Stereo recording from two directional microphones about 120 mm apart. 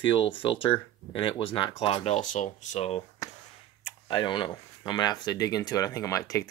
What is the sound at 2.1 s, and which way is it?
Speech, 80° left.